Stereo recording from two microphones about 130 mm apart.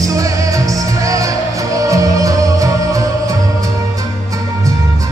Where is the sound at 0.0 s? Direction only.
25° right (ahead or behind).